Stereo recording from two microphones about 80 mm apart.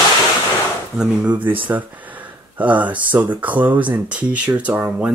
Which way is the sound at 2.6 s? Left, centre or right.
Centre.